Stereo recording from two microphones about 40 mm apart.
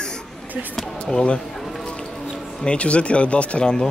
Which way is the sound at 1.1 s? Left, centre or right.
Left.